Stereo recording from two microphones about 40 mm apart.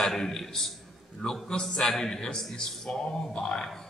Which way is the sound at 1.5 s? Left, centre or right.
Centre.